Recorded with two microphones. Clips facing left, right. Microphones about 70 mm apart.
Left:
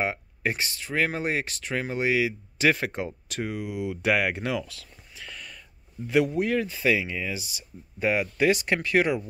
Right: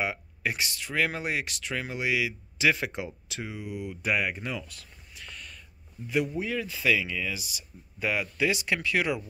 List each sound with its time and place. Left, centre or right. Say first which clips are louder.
0.0 s speech: left 3 dB; left
3.5 s speech: left 5 dB; left
6.0 s speech: left 5 dB; left
6.4 s speech: left 6 dB; left
6.7 s speech: left 2 dB; left